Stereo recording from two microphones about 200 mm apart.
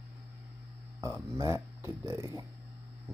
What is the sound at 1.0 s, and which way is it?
Speech, 15° right (ahead or behind).